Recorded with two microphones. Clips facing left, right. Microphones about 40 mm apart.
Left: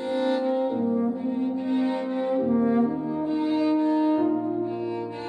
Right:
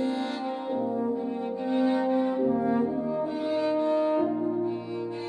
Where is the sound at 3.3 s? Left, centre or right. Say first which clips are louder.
Left 4 dB; left.